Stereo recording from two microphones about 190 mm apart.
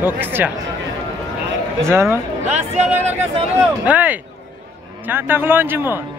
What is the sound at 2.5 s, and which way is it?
Speech, 35° right (ahead or behind).